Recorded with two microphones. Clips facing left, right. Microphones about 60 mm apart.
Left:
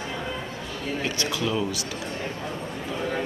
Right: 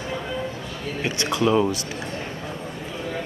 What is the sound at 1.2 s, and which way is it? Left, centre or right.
Speech, right.